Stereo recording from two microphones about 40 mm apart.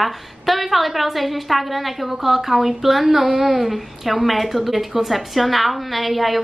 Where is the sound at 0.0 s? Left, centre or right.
Centre.